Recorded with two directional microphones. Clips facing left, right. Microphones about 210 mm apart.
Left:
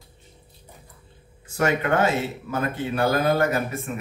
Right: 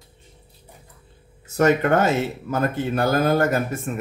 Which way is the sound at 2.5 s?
45° right (ahead or behind).